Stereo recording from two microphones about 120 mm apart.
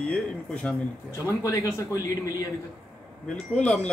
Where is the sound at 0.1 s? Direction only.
10° left (ahead or behind).